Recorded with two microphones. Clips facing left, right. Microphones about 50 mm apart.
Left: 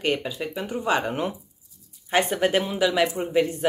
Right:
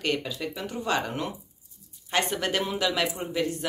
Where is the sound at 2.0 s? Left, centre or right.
Centre.